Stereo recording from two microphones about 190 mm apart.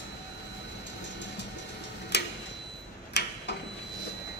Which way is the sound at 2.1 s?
60° left (ahead or behind).